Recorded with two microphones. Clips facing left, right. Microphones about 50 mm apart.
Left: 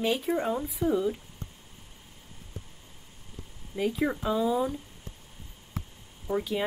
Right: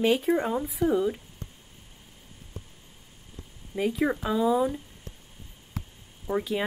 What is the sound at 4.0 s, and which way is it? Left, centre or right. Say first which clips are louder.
Speech: right 2 dB; right.